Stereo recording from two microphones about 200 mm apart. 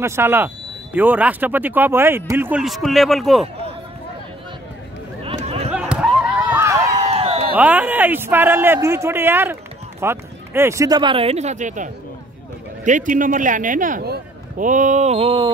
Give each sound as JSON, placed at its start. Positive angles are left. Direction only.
{"t": 0.0, "sound": "speech", "side_deg": -10}
{"t": 5.2, "sound": "a sound", "side_deg": -30}
{"t": 5.7, "sound": "basketball bounce", "side_deg": -5}
{"t": 6.5, "sound": "run", "side_deg": -15}
{"t": 7.0, "sound": "a sound", "side_deg": -30}
{"t": 7.5, "sound": "a man's voice", "side_deg": -10}